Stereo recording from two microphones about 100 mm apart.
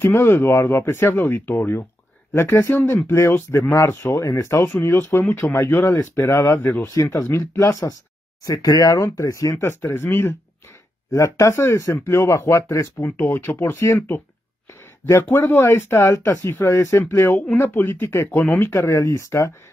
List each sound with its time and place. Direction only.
0.0 s speech: 20° left (ahead or behind)
15.2 s speech: 20° left (ahead or behind)